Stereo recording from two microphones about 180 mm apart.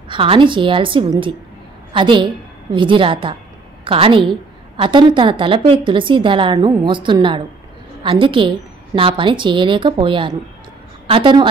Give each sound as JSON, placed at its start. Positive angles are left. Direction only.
{"t": 0.1, "sound": "a woman's voice", "side_deg": -30}